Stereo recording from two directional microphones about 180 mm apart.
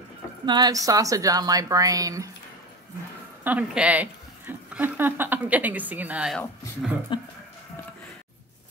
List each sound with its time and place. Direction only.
0.5 s a woman's voice: 20° right (ahead or behind)
3.4 s a woman's voice: 10° right (ahead or behind)
6.3 s speech: 15° left (ahead or behind)
7.1 s music: 25° left (ahead or behind)